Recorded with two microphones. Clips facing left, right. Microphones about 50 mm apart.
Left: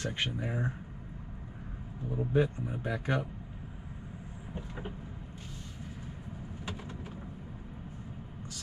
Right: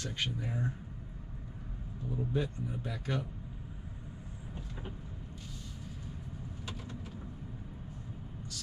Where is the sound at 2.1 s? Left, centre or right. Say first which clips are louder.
Left 6 dB; left.